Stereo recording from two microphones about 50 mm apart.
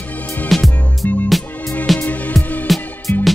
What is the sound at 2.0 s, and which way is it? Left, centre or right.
Music, left.